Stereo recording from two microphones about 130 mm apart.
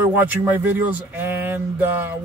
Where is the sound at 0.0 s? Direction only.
15° right (ahead or behind).